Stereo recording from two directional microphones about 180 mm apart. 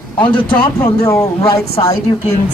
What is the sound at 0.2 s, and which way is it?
A woman's voice, 25° left (ahead or behind).